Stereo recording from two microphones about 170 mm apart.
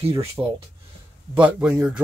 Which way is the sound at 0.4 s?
20° right (ahead or behind).